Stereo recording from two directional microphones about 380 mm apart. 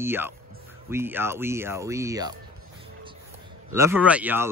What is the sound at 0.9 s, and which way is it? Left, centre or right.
Speech, centre.